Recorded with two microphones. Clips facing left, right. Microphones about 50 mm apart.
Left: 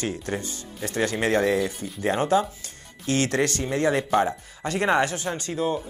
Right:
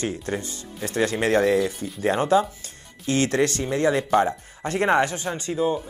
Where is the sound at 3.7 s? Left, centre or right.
Left.